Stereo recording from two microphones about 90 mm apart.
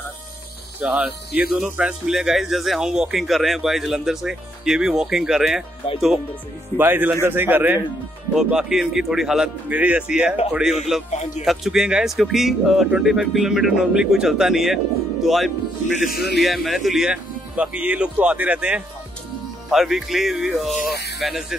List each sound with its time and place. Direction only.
0.8 s speech: 5° right (ahead or behind)
5.8 s speech: 90° left
6.8 s a man's voice: 20° right (ahead or behind)
8.4 s speech: 5° right (ahead or behind)
9.7 s speech: 15° right (ahead or behind)
19.7 s speech: 5° right (ahead or behind)